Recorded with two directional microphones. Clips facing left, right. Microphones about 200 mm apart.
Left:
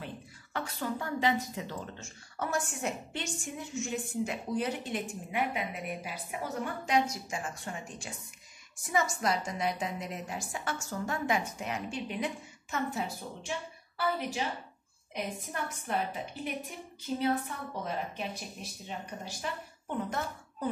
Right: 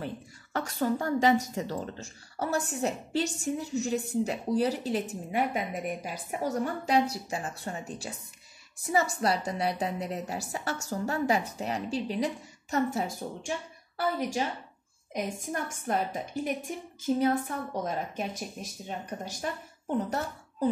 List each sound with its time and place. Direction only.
0.0 s a woman's voice: 45° right (ahead or behind)
9.1 s a woman's voice: 35° right (ahead or behind)
15.1 s speech: 45° right (ahead or behind)